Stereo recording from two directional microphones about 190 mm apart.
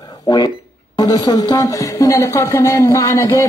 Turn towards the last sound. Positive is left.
turn(degrees=15)  # may be behind; listen again after turning